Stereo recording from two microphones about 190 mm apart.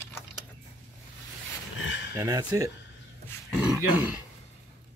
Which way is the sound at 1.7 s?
80° left.